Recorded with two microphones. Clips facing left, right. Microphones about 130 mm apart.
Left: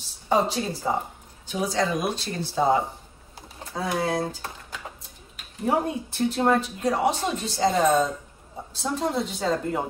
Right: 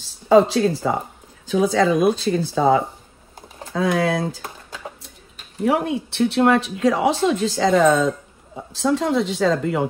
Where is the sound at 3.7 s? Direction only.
90° right.